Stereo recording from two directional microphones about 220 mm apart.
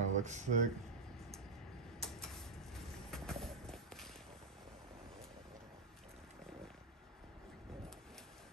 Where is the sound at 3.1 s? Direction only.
Centre (ahead or behind).